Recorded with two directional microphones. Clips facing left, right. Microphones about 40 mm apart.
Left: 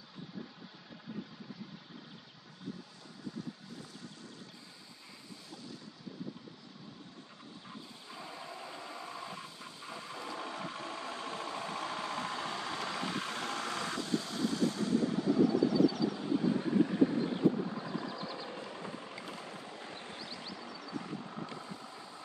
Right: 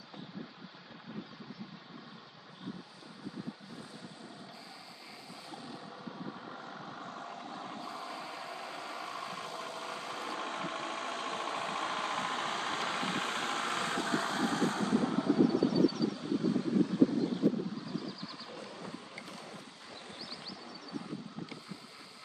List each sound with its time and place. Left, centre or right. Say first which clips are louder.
7.0 s vehicle: right 9 dB; right
15.1 s vehicle: right 2 dB; centre
15.4 s vehicle: left 1 dB; centre
16.3 s vehicle: even; left
20.2 s vehicle: left 1 dB; left
21.3 s vehicle: left 2 dB; left